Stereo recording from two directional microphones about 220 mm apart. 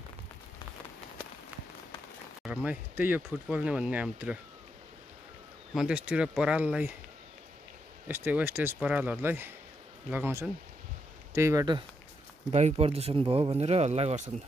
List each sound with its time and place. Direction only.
2.4 s speech: 5° right (ahead or behind)
5.8 s speech: 5° right (ahead or behind)
8.1 s speech: 10° right (ahead or behind)
12.4 s speech: 30° right (ahead or behind)